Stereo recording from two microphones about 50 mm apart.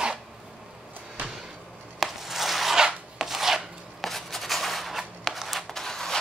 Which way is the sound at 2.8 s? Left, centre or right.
Centre.